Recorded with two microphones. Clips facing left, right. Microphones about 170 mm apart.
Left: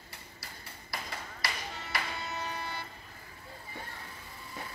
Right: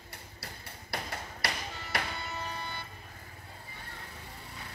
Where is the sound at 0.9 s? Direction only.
65° right (ahead or behind).